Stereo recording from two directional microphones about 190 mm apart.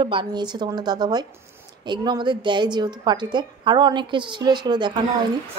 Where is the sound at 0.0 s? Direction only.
25° right (ahead or behind).